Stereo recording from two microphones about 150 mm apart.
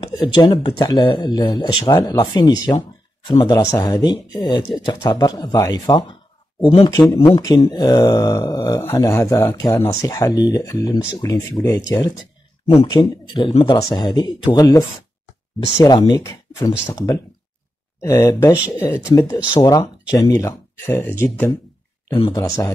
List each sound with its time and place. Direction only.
0.1 s speech: 25° left (ahead or behind)
12.9 s speech: 30° left (ahead or behind); by 21.1 s 15° left (ahead or behind)
22.3 s speech: 25° left (ahead or behind)